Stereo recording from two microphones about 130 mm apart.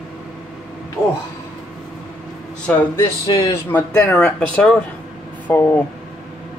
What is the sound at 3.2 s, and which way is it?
Speech, 25° left (ahead or behind).